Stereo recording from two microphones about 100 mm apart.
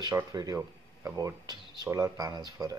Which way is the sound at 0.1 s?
35° right (ahead or behind).